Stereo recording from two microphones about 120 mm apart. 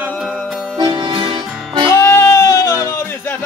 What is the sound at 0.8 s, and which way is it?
Music, 40° right (ahead or behind).